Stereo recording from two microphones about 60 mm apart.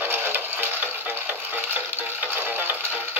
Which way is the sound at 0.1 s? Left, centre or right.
Right.